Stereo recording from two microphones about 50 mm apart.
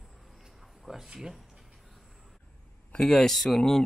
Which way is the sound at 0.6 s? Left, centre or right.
Centre.